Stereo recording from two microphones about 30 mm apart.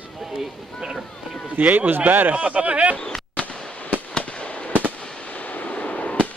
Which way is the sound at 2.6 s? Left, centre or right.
Right.